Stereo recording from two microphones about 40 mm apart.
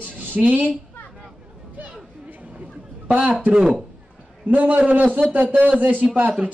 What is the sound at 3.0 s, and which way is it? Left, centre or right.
Speech, right.